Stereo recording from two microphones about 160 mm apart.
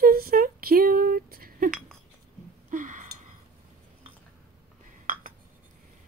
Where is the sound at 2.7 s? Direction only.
55° right (ahead or behind).